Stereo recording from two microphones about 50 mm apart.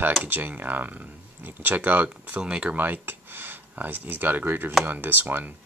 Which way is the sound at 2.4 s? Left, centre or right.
Right.